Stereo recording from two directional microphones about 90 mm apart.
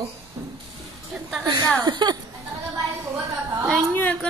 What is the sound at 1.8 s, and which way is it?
Speech, 50° right (ahead or behind).